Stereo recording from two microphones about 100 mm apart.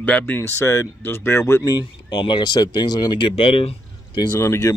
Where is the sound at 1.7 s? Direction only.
50° left (ahead or behind).